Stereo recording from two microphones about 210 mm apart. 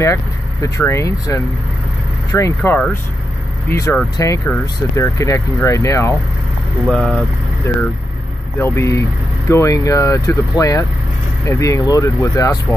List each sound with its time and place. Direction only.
0.0 s speech: 15° left (ahead or behind)
6.9 s speech: centre (ahead or behind)
8.5 s speech: 10° left (ahead or behind)